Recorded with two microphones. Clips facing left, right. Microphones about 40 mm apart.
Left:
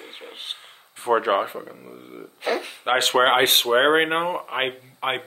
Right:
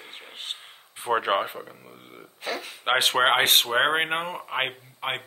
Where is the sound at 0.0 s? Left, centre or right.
Centre.